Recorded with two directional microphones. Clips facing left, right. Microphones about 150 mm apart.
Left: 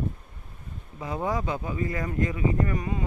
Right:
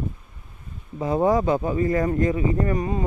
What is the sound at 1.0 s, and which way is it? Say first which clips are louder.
Speech: right 9 dB; 35° right (ahead or behind).